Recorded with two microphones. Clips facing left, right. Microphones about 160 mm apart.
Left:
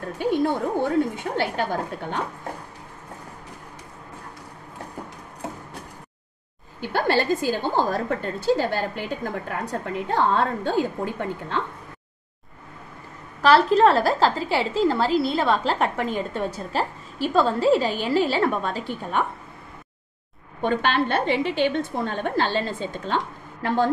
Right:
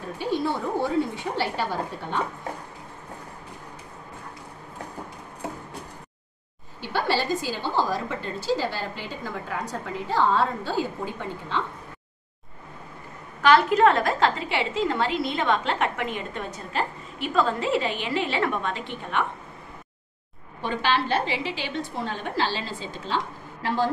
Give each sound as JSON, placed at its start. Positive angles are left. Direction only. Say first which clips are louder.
{"t": 0.2, "sound": "a woman's voice", "louder": "left 4 dB", "side_deg": 55}
{"t": 6.8, "sound": "a woman's voice", "louder": "left 3 dB", "side_deg": 55}
{"t": 13.4, "sound": "a woman's voice", "louder": "left 2 dB", "side_deg": 35}
{"t": 20.6, "sound": "a woman's voice", "louder": "left 3 dB", "side_deg": 55}